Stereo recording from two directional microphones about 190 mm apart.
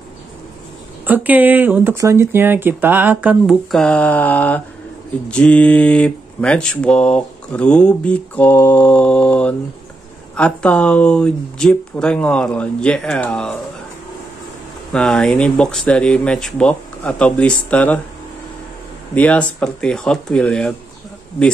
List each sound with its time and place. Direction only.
1.0 s speech: 10° right (ahead or behind); by 13.6 s 5° left (ahead or behind)
14.9 s speech: 5° left (ahead or behind)
19.1 s speech: 5° left (ahead or behind)